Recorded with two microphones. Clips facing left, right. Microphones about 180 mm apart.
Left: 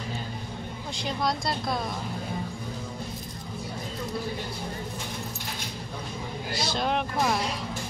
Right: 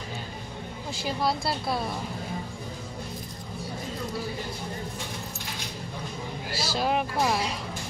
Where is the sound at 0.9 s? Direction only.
5° right (ahead or behind).